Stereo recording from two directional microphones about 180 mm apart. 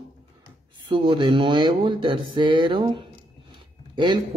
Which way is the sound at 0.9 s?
25° right (ahead or behind).